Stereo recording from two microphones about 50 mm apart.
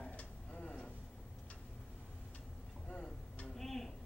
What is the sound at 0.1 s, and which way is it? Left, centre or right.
Tick-tock, left.